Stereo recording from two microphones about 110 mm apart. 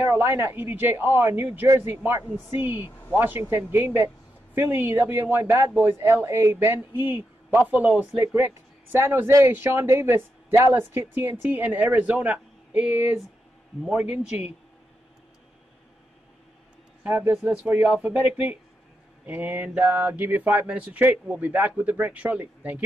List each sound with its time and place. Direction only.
0.1 s a man's voice: 25° right (ahead or behind)
8.4 s a man's voice: 20° right (ahead or behind)
17.0 s speech: 10° right (ahead or behind)